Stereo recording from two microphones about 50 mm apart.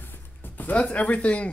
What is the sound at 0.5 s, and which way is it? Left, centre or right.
Speech, left.